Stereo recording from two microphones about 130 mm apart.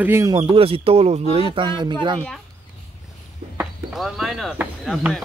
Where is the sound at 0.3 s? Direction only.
40° right (ahead or behind).